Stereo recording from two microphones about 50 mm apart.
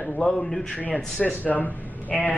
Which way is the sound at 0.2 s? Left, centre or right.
Centre.